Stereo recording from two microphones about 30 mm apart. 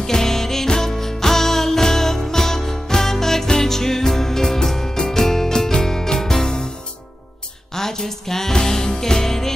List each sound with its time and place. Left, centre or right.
0.0 s music: centre
7.7 s music: centre